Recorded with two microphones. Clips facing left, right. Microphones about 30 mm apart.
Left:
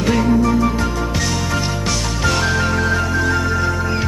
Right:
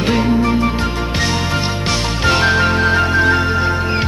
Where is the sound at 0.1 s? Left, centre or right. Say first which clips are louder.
Even; right.